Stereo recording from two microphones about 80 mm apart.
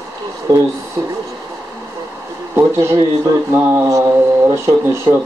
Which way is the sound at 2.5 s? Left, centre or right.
Right.